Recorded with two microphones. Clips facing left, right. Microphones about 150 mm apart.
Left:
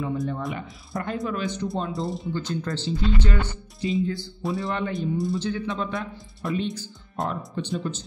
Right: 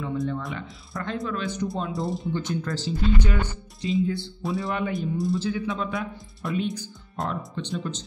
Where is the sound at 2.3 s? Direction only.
20° right (ahead or behind).